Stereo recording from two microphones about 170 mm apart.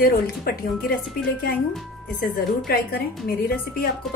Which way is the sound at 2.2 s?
60° left (ahead or behind).